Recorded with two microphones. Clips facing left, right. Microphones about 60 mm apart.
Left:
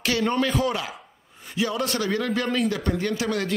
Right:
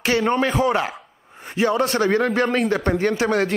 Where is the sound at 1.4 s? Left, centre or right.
Right.